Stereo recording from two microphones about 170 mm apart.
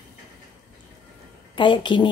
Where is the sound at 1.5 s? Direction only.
30° left (ahead or behind).